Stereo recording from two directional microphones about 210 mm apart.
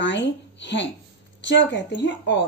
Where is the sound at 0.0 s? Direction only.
60° left (ahead or behind).